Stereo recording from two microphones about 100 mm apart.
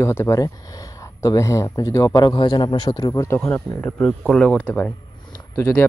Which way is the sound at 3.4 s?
15° left (ahead or behind).